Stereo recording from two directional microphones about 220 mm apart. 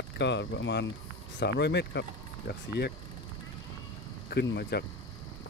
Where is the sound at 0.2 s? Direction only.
55° left (ahead or behind).